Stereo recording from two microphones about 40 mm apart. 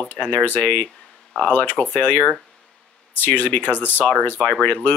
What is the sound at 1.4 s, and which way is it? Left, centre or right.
Speech, left.